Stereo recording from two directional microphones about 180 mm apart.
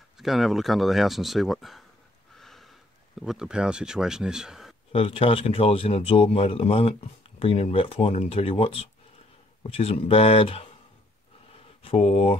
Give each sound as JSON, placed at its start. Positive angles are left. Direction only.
{"t": 0.2, "sound": "speech", "side_deg": 0}
{"t": 2.3, "sound": "a sound", "side_deg": 0}
{"t": 3.2, "sound": "speech", "side_deg": -5}
{"t": 4.9, "sound": "speech", "side_deg": 30}
{"t": 11.8, "sound": "speech", "side_deg": 35}